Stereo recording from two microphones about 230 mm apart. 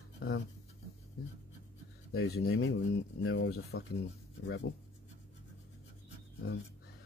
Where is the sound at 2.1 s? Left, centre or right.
Left.